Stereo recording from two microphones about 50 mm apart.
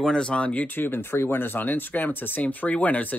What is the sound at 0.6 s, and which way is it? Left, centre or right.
Speech, left.